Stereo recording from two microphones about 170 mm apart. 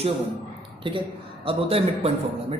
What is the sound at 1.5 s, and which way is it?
Speech, 35° right (ahead or behind).